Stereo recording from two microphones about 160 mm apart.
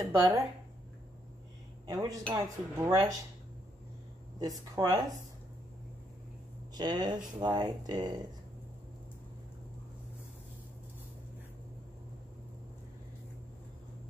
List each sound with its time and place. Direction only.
0.0 s speech: 20° right (ahead or behind)
1.9 s speech: 20° right (ahead or behind)
4.4 s speech: 25° right (ahead or behind)
6.7 s speech: 25° right (ahead or behind)